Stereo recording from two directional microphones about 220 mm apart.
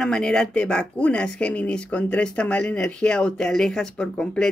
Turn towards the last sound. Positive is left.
turn(degrees=5)  # may be behind; listen again after turning